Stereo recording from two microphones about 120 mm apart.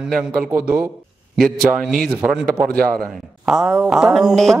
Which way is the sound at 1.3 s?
Centre (ahead or behind).